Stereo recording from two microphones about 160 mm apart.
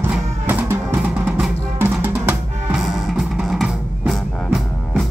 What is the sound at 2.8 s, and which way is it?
Music, centre (ahead or behind).